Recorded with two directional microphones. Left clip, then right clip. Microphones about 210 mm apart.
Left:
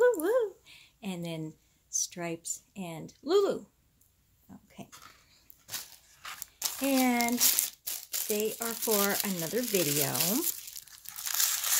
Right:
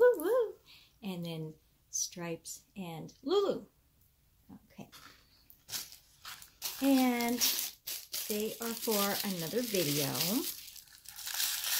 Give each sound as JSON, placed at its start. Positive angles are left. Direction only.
{"t": 0.0, "sound": "a sound", "side_deg": 50}
{"t": 1.9, "sound": "speech", "side_deg": 55}
{"t": 4.5, "sound": "goat", "side_deg": 55}
{"t": 6.6, "sound": "crumpling", "side_deg": 50}